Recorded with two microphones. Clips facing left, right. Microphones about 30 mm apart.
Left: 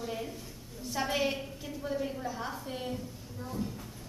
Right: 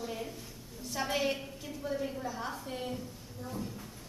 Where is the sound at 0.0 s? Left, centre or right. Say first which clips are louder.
Left 2 dB; centre.